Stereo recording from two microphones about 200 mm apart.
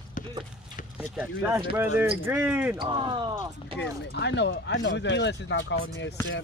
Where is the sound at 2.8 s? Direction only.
25° right (ahead or behind).